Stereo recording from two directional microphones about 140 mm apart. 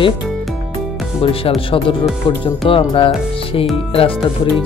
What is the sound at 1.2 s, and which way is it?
Speech, 40° left (ahead or behind).